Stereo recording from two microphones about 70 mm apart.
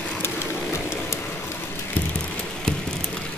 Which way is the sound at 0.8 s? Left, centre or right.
Left.